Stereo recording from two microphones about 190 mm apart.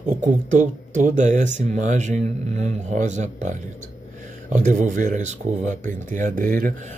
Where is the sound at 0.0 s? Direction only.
40° right (ahead or behind).